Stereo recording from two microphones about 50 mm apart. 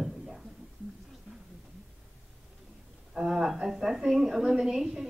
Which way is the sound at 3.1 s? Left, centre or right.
Centre.